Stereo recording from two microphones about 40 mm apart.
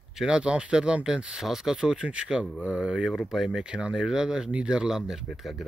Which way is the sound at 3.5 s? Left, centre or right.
Right.